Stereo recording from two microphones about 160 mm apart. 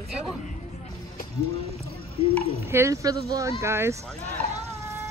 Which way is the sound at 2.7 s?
20° right (ahead or behind).